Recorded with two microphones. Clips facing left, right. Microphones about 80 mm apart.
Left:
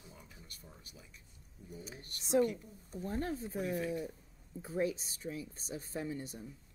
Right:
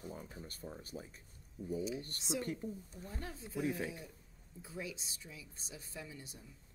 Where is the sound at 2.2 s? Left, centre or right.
Left.